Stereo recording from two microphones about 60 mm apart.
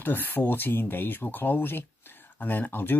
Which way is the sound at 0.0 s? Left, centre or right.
Left.